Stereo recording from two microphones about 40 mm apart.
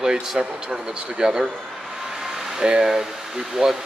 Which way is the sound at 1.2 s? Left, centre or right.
Centre.